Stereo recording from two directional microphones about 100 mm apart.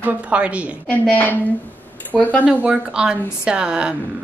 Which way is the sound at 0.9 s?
15° left (ahead or behind).